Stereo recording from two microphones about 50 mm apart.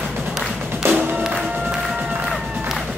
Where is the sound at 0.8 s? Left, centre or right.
Right.